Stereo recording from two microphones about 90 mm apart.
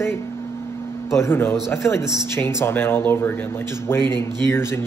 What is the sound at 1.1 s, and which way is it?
Speech, 30° left (ahead or behind).